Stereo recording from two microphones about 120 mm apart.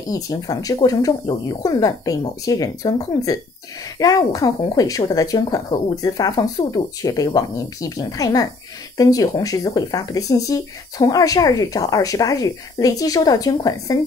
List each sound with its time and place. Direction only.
0.1 s speech: 30° left (ahead or behind)